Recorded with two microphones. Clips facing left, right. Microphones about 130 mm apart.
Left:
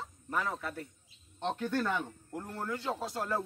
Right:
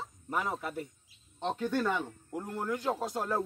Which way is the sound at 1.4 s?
Centre (ahead or behind).